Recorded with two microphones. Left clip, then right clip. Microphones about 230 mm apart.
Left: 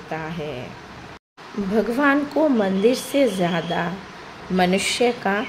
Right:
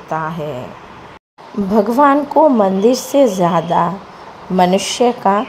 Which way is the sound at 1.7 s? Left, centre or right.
Centre.